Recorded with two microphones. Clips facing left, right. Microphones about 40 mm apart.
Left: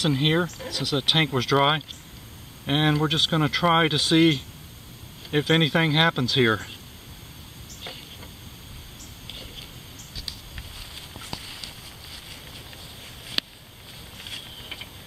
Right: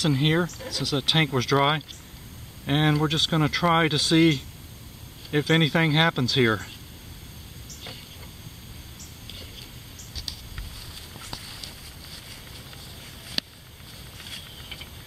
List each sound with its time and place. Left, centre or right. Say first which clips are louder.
0.0 s speech: even; centre
13.4 s a sound: left 3 dB; centre
14.3 s vehicle: left 3 dB; centre